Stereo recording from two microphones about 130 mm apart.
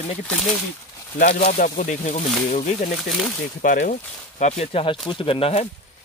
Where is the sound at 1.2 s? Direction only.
80° left.